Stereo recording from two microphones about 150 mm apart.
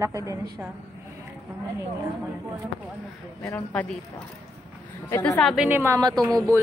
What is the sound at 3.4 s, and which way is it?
Speech, 10° left (ahead or behind).